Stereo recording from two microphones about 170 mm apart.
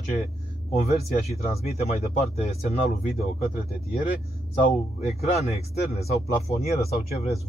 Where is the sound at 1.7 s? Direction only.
40° left (ahead or behind).